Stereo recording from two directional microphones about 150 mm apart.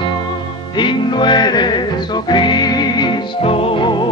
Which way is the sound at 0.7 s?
30° left (ahead or behind).